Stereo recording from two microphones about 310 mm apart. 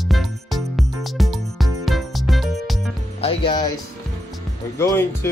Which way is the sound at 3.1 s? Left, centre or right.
Centre.